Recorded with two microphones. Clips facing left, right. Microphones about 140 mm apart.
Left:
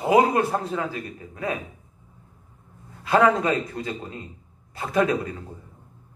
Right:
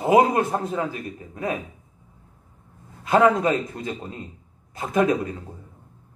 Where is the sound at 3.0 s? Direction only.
20° right (ahead or behind).